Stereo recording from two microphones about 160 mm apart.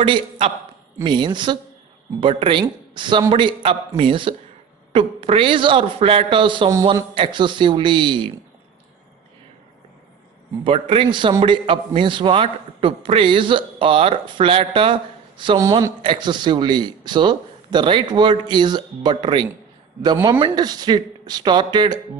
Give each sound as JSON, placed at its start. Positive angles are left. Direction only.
{"t": 0.0, "sound": "a man's voice", "side_deg": -30}
{"t": 6.7, "sound": "speech", "side_deg": -20}
{"t": 10.6, "sound": "a man's voice", "side_deg": -35}
{"t": 15.6, "sound": "speech", "side_deg": -20}
{"t": 16.0, "sound": "speech", "side_deg": -30}